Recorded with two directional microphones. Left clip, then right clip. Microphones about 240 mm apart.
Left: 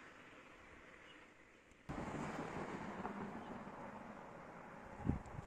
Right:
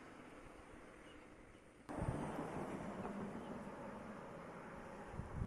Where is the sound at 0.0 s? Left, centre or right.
Right.